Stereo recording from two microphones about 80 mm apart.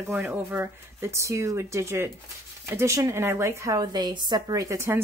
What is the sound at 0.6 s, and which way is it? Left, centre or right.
Speech, right.